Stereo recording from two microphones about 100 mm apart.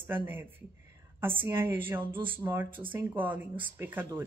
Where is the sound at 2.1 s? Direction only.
60° right (ahead or behind).